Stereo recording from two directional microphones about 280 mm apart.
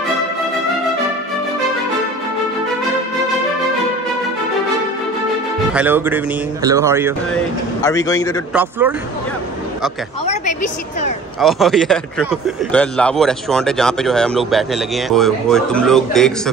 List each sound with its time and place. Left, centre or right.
5.7 s speech: centre
7.8 s a man's voice: centre
8.5 s speech: centre
10.2 s a woman's voice: left
11.3 s a man's voice: centre